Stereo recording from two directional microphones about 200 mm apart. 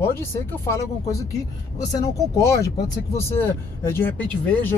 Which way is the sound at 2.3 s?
15° left (ahead or behind).